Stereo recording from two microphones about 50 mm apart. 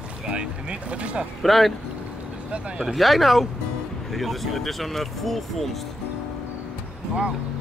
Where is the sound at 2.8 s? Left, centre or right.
Centre.